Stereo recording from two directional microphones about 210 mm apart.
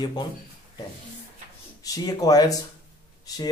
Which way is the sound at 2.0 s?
15° left (ahead or behind).